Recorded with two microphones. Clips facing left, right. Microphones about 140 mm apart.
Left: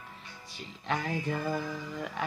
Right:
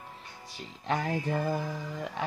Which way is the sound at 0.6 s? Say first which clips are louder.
Right 2 dB; 35° right (ahead or behind).